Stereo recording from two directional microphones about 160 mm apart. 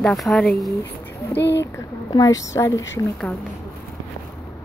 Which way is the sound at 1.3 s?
90° left.